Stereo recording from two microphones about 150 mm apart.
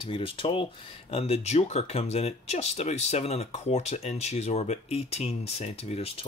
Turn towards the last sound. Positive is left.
turn(degrees=40)  # may be behind; listen again after turning